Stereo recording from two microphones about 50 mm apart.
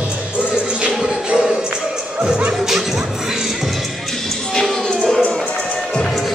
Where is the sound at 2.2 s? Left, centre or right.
Centre.